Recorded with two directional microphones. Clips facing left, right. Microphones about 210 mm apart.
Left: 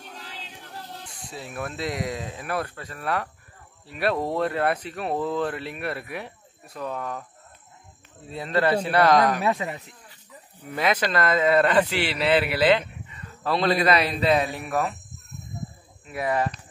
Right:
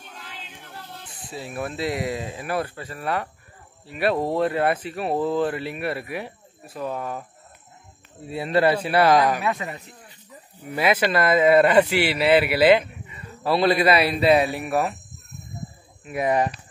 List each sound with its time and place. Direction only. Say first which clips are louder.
0.2 s a sound: even; 35° left (ahead or behind)
1.0 s speech: right 3 dB; centre (ahead or behind)
8.3 s speech: right 3 dB; 10° right (ahead or behind)
9.6 s speech: left 2 dB; 20° left (ahead or behind)
10.6 s speech: right 3 dB; 10° right (ahead or behind)
16.1 s speech: right 3 dB; 20° right (ahead or behind)